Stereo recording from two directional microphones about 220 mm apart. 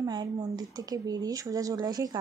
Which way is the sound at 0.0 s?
20° right (ahead or behind).